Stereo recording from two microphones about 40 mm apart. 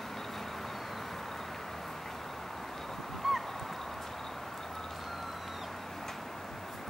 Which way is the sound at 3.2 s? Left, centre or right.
Centre.